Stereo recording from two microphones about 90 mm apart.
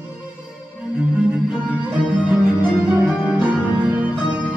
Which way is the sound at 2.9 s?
15° right (ahead or behind).